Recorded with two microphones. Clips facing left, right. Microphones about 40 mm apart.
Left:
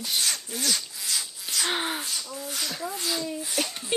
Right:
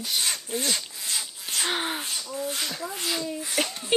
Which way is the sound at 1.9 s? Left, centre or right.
Right.